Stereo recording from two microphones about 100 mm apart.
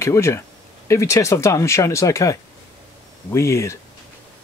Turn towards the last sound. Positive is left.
turn(degrees=30)  # may be behind; listen again after turning